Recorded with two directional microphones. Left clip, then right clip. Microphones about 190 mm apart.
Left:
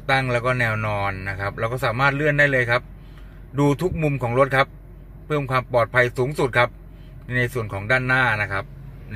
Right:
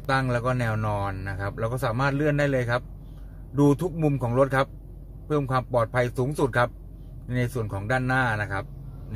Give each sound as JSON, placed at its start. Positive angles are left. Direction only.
{"t": 0.0, "sound": "speech", "side_deg": 5}